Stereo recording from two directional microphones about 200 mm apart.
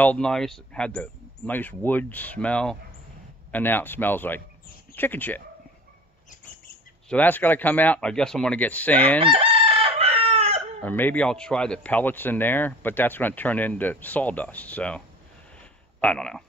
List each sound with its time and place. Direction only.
0.0 s speech: 5° left (ahead or behind)
7.1 s speech: 10° left (ahead or behind)
9.2 s chicken: 25° right (ahead or behind)
10.8 s speech: 10° left (ahead or behind)